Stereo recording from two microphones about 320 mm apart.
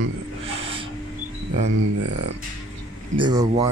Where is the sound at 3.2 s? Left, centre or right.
Centre.